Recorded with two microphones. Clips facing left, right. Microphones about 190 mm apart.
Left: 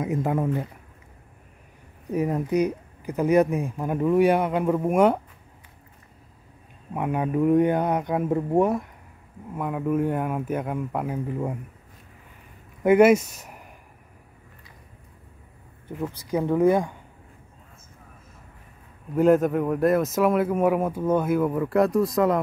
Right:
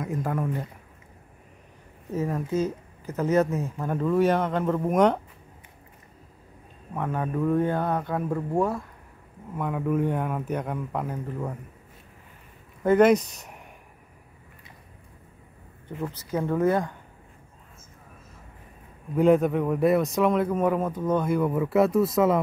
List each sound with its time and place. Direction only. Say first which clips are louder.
0.0 s speech: left 4 dB; 20° left (ahead or behind)
2.0 s speech: left 4 dB; 15° left (ahead or behind)
6.9 s speech: left 3 dB; 15° left (ahead or behind)
9.6 s speech: left 1 dB; 5° left (ahead or behind)
12.8 s speech: left 2 dB; 10° left (ahead or behind)
16.0 s speech: left 3 dB; 10° left (ahead or behind)
19.1 s speech: left 1 dB; centre (ahead or behind)